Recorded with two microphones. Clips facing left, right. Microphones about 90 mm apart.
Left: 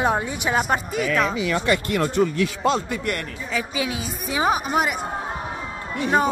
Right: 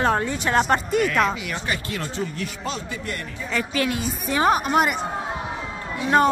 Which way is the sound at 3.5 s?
5° left (ahead or behind).